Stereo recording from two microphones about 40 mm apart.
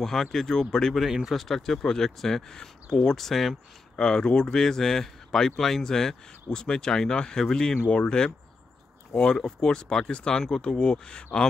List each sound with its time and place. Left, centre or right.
0.0 s speech: centre
3.2 s speech: centre
3.9 s speech: centre